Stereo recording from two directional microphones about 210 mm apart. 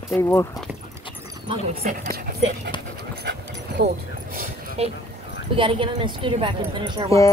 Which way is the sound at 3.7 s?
50° right (ahead or behind).